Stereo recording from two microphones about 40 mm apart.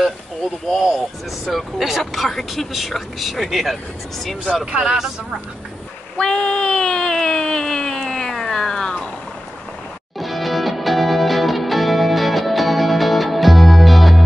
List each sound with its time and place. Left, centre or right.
0.7 s speech: centre
2.2 s speech: centre
4.8 s speech: centre
6.1 s a sound: left
10.1 s music: centre